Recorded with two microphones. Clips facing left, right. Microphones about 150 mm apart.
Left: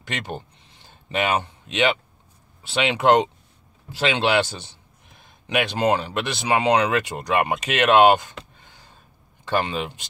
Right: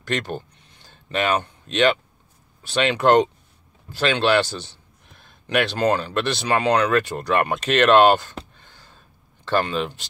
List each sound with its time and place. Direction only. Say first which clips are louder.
0.0 s speech: right 5 dB; 20° left (ahead or behind)
5.2 s a sound: right 2 dB; 15° left (ahead or behind)
5.8 s speech: right 1 dB; 15° left (ahead or behind)
9.4 s speech: right 2 dB; 15° left (ahead or behind)